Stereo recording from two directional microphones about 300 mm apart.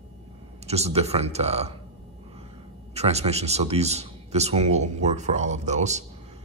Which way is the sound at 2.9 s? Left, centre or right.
Right.